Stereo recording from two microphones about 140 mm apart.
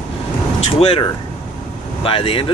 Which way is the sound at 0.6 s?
45° left (ahead or behind).